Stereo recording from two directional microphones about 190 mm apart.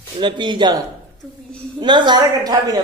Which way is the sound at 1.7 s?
25° right (ahead or behind).